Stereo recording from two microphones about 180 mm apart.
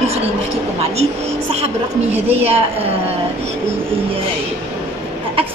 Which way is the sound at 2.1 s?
35° right (ahead or behind).